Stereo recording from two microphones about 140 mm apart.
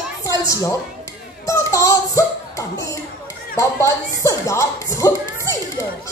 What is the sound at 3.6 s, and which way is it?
Speech, 20° left (ahead or behind).